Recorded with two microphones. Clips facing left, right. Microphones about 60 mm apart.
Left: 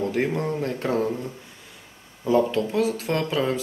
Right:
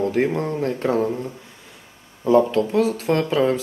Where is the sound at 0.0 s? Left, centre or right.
Right.